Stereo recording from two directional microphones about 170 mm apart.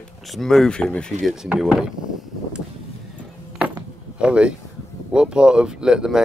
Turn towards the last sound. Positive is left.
turn(degrees=-5)  # may be behind; listen again after turning